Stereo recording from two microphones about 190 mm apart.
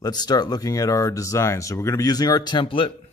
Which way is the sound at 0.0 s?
20° left (ahead or behind).